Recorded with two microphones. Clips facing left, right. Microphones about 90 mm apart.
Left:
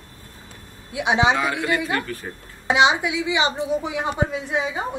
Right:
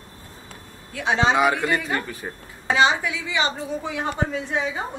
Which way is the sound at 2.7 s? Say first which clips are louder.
Left 2 dB; 15° left (ahead or behind).